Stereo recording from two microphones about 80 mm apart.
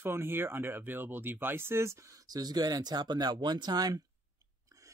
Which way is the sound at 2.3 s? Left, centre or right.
Right.